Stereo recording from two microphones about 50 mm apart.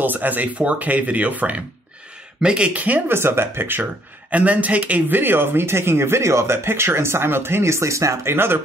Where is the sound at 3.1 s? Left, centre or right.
Right.